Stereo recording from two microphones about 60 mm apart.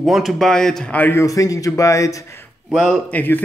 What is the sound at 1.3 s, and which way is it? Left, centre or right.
Speech, left.